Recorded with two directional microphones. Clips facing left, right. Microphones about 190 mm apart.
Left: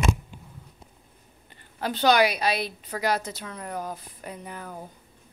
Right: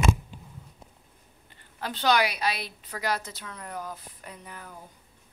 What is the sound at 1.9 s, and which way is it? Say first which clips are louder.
A woman's voice: left 4 dB; 15° left (ahead or behind).